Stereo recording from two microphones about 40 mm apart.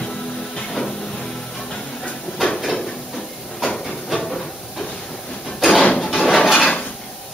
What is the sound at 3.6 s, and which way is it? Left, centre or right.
Hiss, centre.